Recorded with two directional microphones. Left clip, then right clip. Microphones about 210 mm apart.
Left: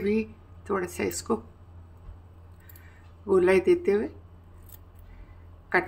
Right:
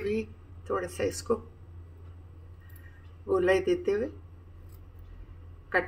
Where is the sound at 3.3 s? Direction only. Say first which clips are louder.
Left 4 dB; 40° left (ahead or behind).